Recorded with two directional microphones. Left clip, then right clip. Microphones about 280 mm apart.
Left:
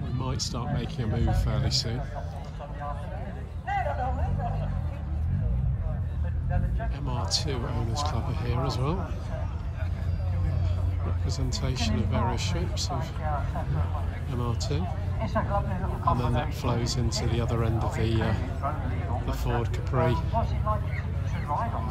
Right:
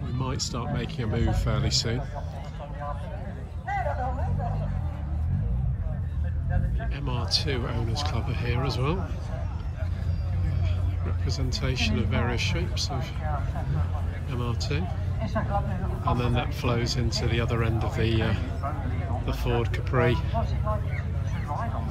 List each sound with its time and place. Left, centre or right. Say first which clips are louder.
0.2 s speech: right 2 dB; centre
3.6 s speech: even; centre
7.1 s speech: right 3 dB; centre
11.2 s speech: right 3 dB; centre
14.3 s speech: right 1 dB; centre
15.2 s speech: left 1 dB; centre
16.0 s speech: left 1 dB; centre